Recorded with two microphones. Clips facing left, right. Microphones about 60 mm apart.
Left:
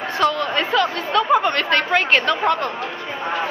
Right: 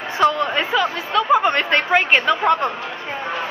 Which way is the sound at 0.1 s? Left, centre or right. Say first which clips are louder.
Right 2 dB; centre.